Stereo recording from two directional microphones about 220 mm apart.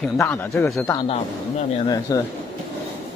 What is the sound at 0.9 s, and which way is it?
Speech, 25° left (ahead or behind).